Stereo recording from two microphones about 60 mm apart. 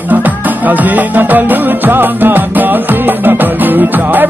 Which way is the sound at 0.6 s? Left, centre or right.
Right.